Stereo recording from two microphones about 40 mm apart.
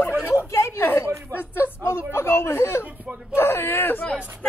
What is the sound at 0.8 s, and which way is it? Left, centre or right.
A woman's voice, left.